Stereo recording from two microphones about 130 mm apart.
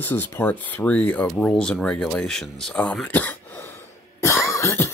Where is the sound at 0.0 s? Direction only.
15° left (ahead or behind).